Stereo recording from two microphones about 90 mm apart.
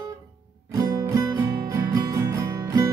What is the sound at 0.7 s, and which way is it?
Guitar, 45° right (ahead or behind).